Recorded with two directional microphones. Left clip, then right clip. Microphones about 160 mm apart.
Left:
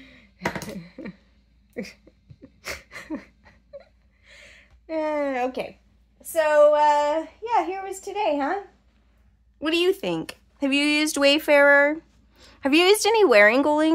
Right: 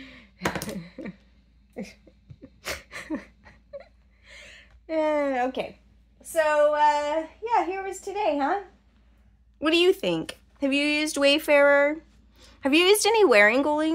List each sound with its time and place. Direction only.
0.0 s typing: 25° right (ahead or behind)
0.7 s typing: 5° right (ahead or behind)
2.4 s a sound: 5° right (ahead or behind)
6.2 s a child's voice: 15° left (ahead or behind)
9.6 s a child's voice: 5° right (ahead or behind)
10.6 s speech: 20° left (ahead or behind)